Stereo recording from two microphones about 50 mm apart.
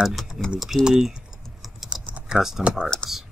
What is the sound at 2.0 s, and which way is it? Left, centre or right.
Typing, right.